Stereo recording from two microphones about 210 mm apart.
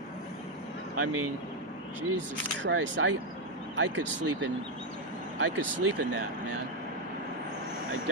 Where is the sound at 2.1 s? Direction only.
60° right (ahead or behind).